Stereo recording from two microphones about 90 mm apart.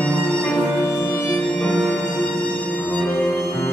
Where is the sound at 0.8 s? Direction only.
25° left (ahead or behind).